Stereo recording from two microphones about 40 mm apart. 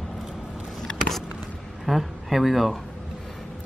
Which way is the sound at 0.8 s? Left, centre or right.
Centre.